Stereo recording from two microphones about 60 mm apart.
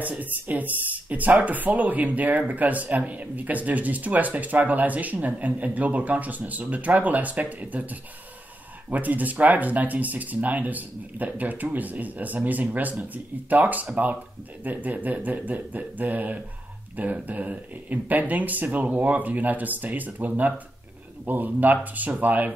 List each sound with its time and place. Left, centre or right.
0.0 s speech: right